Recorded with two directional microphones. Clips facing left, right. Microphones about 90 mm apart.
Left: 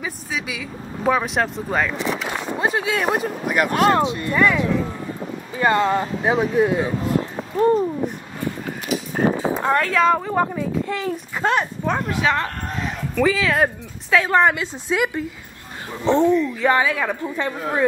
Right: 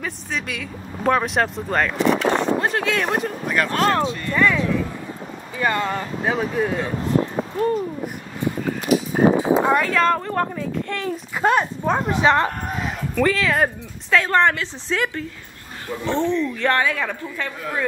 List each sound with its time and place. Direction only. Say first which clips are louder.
0.0 s speech: even; 5° left (ahead or behind)
5.6 s speech: left 4 dB; 25° left (ahead or behind)
7.5 s speech: left 5 dB; 30° left (ahead or behind)
8.8 s a sound: right 5 dB; centre (ahead or behind)
9.6 s a sound: right 2 dB; 15° right (ahead or behind)
9.8 s speech: left 1 dB; 5° left (ahead or behind)
11.4 s speech: right 2 dB; 10° right (ahead or behind)
12.0 s speech: right 6 dB; 20° right (ahead or behind)
12.6 s a sound: right 1 dB; 5° right (ahead or behind)
14.1 s speech: left 1 dB; 5° left (ahead or behind)
17.2 s speech: left 4 dB; 20° left (ahead or behind)